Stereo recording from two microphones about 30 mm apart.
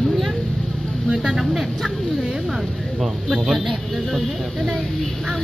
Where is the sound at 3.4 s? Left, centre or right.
Centre.